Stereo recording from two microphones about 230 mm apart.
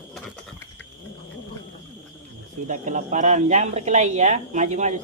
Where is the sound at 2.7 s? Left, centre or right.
Right.